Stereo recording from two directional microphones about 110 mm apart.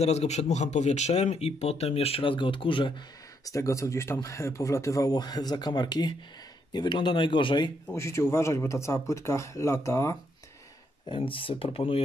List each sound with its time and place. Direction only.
0.0 s speech: 75° left (ahead or behind); by 2.9 s 50° left (ahead or behind)
3.4 s a man's voice: 30° left (ahead or behind); by 7.7 s 45° left (ahead or behind)
7.9 s speech: 25° left (ahead or behind)
11.1 s a man's voice: 50° left (ahead or behind)